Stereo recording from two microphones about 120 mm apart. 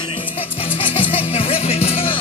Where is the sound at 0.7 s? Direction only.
45° left (ahead or behind).